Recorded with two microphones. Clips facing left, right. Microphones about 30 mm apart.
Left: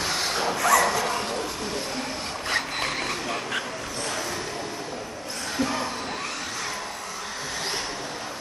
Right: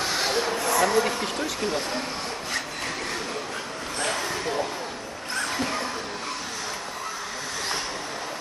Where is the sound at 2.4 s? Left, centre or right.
Left.